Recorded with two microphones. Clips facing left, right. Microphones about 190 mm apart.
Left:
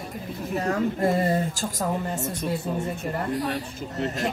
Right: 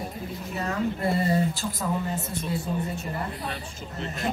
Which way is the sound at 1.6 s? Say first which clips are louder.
Left 2 dB; 45° left (ahead or behind).